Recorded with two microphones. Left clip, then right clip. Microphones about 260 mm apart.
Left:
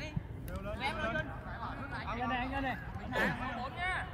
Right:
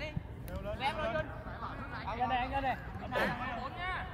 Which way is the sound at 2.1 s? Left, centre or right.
Right.